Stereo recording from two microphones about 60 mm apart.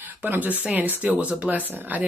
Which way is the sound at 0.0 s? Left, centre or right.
Right.